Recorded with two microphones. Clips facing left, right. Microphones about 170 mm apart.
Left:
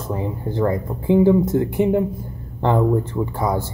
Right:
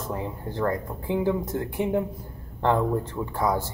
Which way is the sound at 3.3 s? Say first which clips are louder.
Left 1 dB; 5° left (ahead or behind).